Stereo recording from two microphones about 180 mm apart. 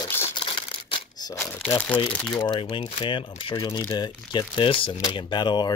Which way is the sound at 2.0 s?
5° left (ahead or behind).